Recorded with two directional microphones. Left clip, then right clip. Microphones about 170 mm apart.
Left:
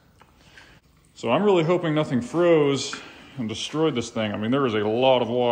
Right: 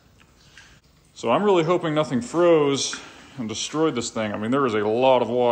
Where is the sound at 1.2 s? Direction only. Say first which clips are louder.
Right 1 dB; centre (ahead or behind).